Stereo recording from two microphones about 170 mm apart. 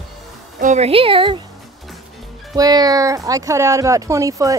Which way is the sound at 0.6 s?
40° right (ahead or behind).